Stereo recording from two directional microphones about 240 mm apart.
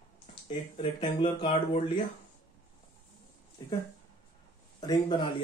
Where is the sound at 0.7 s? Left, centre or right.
Left.